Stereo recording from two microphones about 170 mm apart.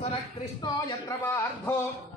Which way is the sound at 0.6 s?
25° left (ahead or behind).